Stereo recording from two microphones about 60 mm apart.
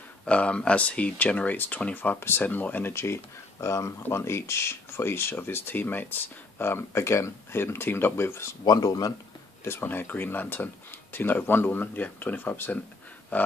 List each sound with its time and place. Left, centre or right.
0.2 s speech: left
2.9 s speech: left
8.7 s speech: left
9.7 s speech: left